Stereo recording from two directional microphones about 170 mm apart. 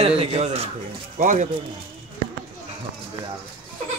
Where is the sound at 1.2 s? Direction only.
50° right (ahead or behind).